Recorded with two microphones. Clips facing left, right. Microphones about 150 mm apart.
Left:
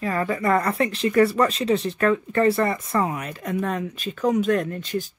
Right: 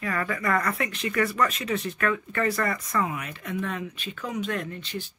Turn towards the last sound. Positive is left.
turn(degrees=45)  # may be behind; listen again after turning